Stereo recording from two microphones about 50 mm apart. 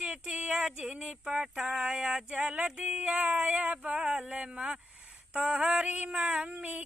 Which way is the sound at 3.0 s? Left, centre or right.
Right.